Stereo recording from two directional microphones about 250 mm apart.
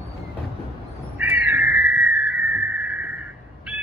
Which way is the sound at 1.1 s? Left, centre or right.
Centre.